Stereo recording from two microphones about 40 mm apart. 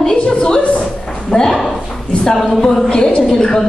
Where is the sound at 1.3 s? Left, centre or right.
Centre.